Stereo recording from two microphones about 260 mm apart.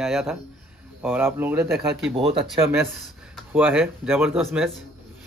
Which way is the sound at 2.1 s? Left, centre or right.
Right.